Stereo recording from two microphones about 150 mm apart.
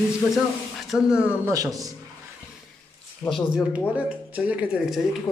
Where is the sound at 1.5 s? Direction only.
25° right (ahead or behind).